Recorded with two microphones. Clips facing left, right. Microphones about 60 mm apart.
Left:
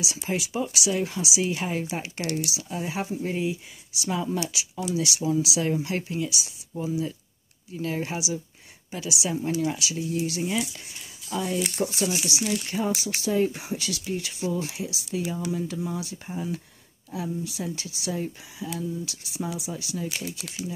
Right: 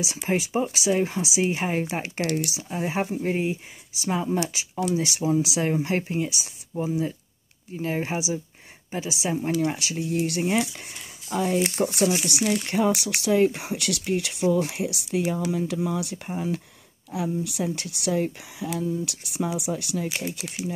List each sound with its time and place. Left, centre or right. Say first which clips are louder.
0.0 s speech: right 4 dB; right
15.5 s speech: right 4 dB; right
17.1 s speech: right 4 dB; right